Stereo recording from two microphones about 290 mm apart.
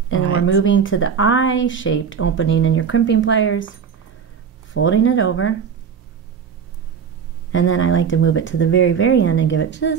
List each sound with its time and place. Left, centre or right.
0.5 s speech: left
4.7 s speech: left
7.5 s speech: left